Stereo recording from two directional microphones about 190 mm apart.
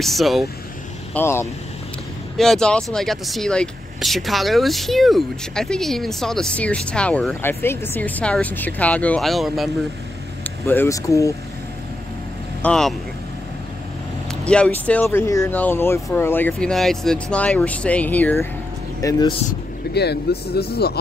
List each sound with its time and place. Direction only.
0.0 s speech: centre (ahead or behind)
1.1 s speech: 15° left (ahead or behind)
2.3 s speech: 5° left (ahead or behind)
10.4 s speech: 10° left (ahead or behind)
12.6 s speech: 5° left (ahead or behind)
14.4 s speech: 5° left (ahead or behind)
19.9 s speech: 60° left (ahead or behind)